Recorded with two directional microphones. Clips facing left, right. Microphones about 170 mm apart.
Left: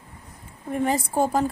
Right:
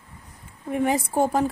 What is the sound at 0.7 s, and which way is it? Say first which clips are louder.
Speech: right 1 dB; 10° right (ahead or behind).